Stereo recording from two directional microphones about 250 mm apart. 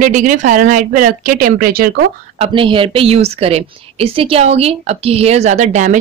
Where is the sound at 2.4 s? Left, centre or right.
Centre.